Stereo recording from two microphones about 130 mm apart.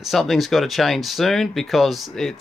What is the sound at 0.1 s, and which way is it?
Speech, centre (ahead or behind).